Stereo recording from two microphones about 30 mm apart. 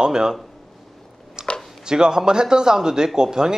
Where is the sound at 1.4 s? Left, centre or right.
Right.